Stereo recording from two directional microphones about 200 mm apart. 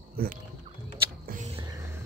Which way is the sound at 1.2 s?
45° right (ahead or behind).